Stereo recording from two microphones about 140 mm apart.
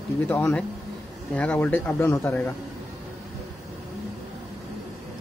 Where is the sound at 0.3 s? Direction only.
15° left (ahead or behind).